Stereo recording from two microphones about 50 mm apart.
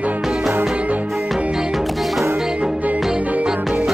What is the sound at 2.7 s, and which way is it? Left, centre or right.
Music, right.